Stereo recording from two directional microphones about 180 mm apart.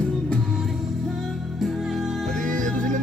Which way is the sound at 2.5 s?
45° right (ahead or behind).